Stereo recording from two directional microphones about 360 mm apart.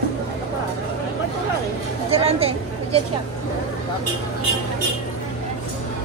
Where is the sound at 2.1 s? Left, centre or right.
Centre.